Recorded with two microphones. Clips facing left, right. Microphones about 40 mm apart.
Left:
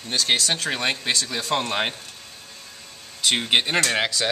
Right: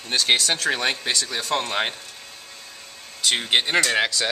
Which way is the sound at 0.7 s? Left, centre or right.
Centre.